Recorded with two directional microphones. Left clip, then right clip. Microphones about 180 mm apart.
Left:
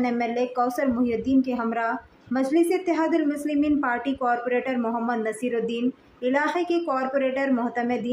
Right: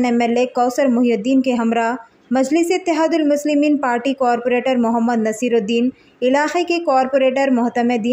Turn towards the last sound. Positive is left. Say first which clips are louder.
# right 8 dB
turn(degrees=-40)  # may be behind; listen again after turning